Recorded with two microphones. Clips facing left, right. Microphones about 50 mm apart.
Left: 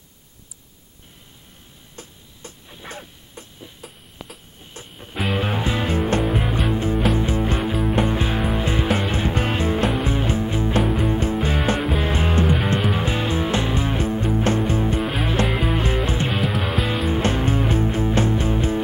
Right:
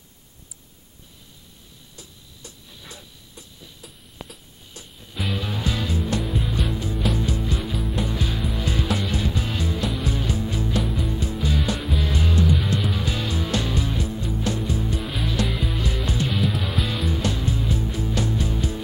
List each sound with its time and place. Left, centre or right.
2.0 s a sound: left
3.8 s a sound: centre
4.7 s music: left
6.2 s music: left
6.7 s music: left
7.8 s music: left
8.1 s music: left
16.4 s music: centre
16.8 s music: left